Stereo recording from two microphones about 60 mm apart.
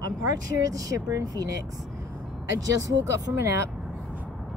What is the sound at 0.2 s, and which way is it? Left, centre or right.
Speech, right.